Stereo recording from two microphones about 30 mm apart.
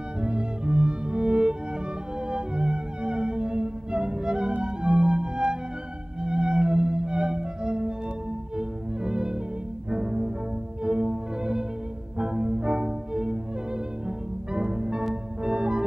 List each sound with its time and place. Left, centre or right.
0.2 s music: right
8.5 s violin: right
9.8 s cello: right
10.8 s music: right